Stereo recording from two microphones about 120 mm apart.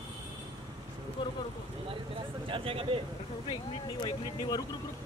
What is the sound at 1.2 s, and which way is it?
Speech, 40° left (ahead or behind).